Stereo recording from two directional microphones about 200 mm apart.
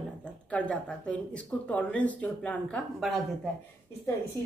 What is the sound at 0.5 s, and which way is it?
Speech, 5° left (ahead or behind).